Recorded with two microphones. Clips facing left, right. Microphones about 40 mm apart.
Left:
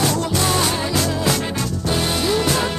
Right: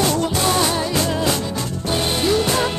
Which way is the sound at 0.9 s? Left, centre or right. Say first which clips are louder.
Even; right.